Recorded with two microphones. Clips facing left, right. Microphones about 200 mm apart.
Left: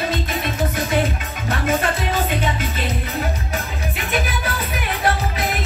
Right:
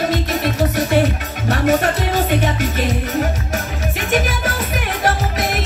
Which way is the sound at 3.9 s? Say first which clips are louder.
Right 5 dB; 45° right (ahead or behind).